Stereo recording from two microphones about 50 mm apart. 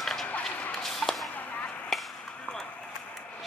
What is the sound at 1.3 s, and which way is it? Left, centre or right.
Chop, left.